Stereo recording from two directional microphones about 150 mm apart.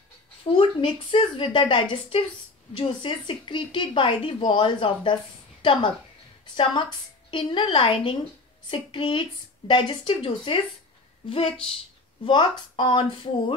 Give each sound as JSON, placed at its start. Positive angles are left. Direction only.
{"t": 0.4, "sound": "a woman's voice", "side_deg": 35}